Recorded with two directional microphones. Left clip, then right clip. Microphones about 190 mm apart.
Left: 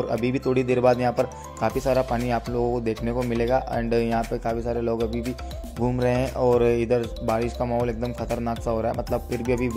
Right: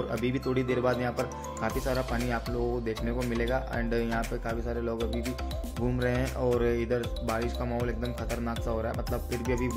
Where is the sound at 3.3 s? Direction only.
30° left (ahead or behind).